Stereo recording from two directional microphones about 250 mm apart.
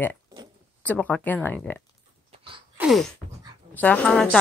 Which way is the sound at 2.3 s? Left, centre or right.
Right.